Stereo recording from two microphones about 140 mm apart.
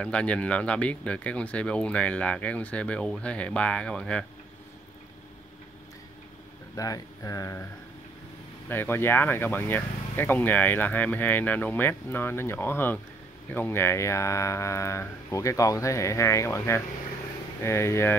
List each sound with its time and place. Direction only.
0.0 s speech: 10° left (ahead or behind)
6.8 s speech: 25° left (ahead or behind)
8.6 s speech: 15° left (ahead or behind)